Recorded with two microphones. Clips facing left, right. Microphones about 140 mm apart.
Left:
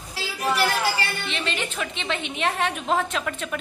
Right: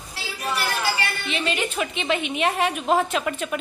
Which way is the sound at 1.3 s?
10° right (ahead or behind).